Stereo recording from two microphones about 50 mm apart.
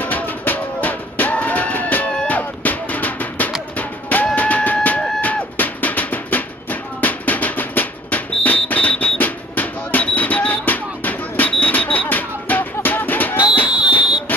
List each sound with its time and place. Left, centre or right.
0.0 s music: left
13.7 s fire alarm: centre